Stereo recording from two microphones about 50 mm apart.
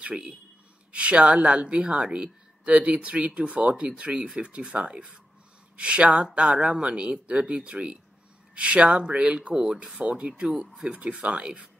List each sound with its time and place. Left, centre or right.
0.0 s speech: right